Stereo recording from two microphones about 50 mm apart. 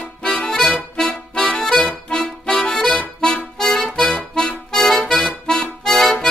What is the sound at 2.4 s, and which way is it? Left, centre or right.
Music, centre.